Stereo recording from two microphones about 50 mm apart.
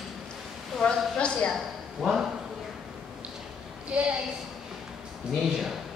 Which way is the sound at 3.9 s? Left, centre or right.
Centre.